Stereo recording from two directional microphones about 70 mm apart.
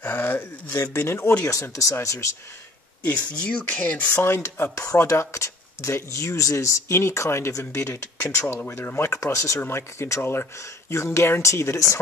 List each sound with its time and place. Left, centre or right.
0.0 s speech: left
1.4 s speech: left
2.0 s speech: left
3.3 s speech: centre
4.2 s speech: left
9.6 s speech: left